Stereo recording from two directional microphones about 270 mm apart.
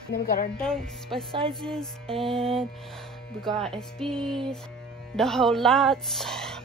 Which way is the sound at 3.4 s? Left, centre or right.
Centre.